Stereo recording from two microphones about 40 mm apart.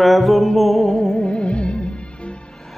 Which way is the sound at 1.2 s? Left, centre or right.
Left.